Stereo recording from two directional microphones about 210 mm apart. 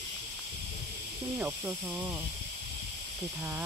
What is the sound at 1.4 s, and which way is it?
Speech, 10° right (ahead or behind).